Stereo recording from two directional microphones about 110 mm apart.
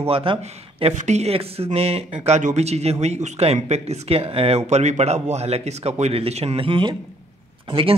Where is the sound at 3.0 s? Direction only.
90° right.